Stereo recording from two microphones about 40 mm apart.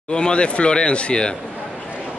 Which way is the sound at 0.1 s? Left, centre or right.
Left.